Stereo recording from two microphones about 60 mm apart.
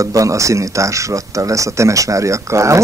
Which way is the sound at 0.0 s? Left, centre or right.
Right.